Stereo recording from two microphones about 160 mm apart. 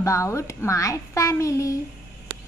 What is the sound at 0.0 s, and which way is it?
A woman's voice, 20° left (ahead or behind).